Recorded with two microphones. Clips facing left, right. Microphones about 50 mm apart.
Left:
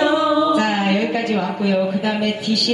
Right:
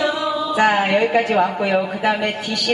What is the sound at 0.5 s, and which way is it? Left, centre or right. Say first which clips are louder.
A man's voice: right 2 dB; centre.